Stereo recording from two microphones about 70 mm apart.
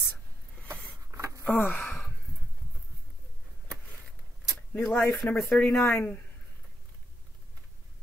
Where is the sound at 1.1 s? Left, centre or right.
Right.